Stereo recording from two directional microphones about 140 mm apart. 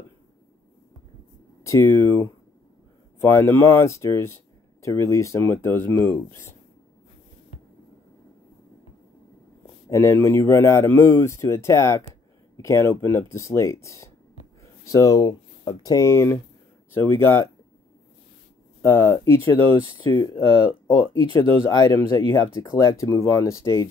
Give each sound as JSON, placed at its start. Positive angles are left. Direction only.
{"t": 1.6, "sound": "speech", "side_deg": 20}
{"t": 9.8, "sound": "speech", "side_deg": 20}
{"t": 18.8, "sound": "speech", "side_deg": 20}
{"t": 20.0, "sound": "speech", "side_deg": 30}